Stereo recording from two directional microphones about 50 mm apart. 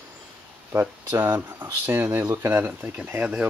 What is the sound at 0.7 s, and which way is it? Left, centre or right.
Speech, right.